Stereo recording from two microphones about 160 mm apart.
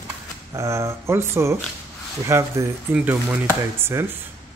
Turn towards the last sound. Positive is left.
turn(degrees=-15)  # may be behind; listen again after turning